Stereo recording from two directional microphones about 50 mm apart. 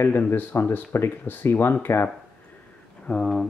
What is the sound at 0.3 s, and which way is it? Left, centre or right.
Speech, left.